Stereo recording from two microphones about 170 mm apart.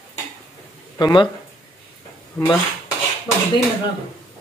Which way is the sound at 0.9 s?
25° left (ahead or behind).